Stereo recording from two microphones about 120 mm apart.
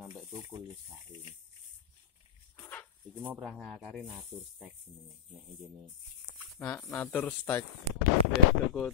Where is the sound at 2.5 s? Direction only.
20° left (ahead or behind).